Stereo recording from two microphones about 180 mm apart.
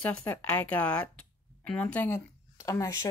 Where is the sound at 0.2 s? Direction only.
10° left (ahead or behind).